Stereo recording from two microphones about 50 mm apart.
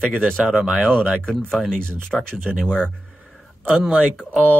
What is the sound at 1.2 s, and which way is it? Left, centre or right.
Speech, centre.